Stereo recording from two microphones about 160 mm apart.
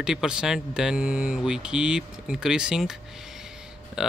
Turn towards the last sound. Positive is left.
turn(degrees=-5)  # may be behind; listen again after turning